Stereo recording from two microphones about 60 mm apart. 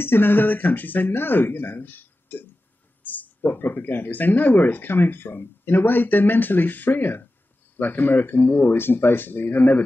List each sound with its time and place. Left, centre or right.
0.0 s speech: left